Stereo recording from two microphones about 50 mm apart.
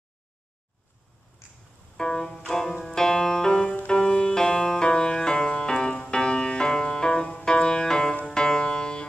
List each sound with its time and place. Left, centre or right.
1.4 s music: left
2.0 s music: centre